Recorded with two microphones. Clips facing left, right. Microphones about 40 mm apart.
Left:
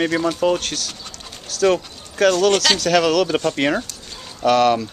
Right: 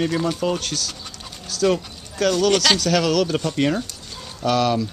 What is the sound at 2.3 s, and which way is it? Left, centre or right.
Speech, centre.